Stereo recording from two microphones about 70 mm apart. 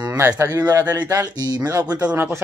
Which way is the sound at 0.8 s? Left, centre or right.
Right.